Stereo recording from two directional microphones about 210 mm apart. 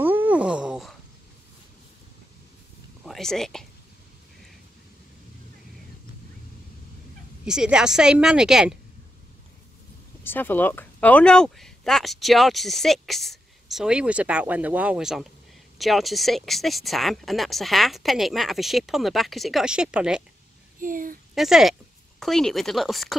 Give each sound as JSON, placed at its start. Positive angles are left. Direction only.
{"t": 0.0, "sound": "a sound", "side_deg": -10}
{"t": 3.1, "sound": "speech", "side_deg": 0}
{"t": 7.4, "sound": "speech", "side_deg": -5}
{"t": 10.2, "sound": "speech", "side_deg": 10}
{"t": 20.8, "sound": "speech", "side_deg": -40}
{"t": 21.4, "sound": "speech", "side_deg": 0}